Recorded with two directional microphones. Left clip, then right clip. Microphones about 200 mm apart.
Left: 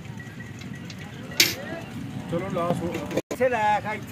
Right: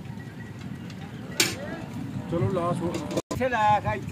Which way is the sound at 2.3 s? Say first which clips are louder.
Even; 45° left (ahead or behind).